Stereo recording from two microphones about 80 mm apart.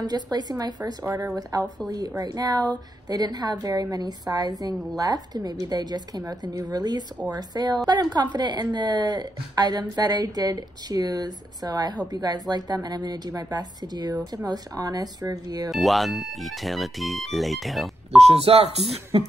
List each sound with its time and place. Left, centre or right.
0.0 s a woman's voice: right
1.0 s a woman's voice: right
15.7 s speech: centre